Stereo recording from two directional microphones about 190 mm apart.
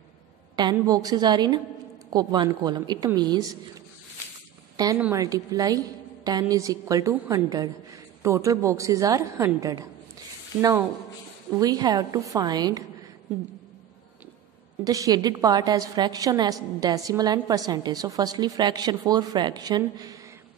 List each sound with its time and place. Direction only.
0.6 s a woman's voice: 20° right (ahead or behind)
14.9 s a woman's voice: 20° right (ahead or behind)